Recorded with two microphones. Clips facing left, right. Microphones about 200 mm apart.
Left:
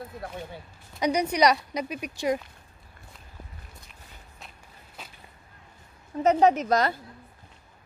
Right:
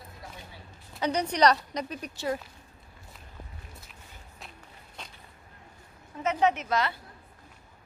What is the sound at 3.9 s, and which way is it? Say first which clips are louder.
Walk: even; centre (ahead or behind).